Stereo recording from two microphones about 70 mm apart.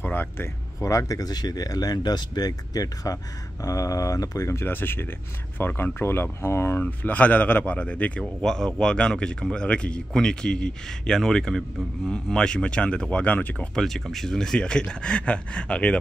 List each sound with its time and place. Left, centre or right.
0.0 s a sound: left
0.7 s speech: left
4.5 s speech: left
8.4 s speech: centre
13.7 s speech: centre